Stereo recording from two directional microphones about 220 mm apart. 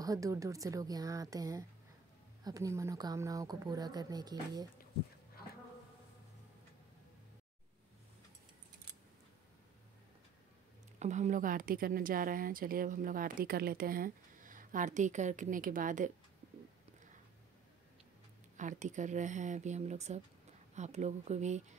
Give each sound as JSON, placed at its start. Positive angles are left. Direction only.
{"t": 0.0, "sound": "speech", "side_deg": -15}
{"t": 11.0, "sound": "a woman's voice", "side_deg": -30}
{"t": 18.6, "sound": "a woman's voice", "side_deg": -35}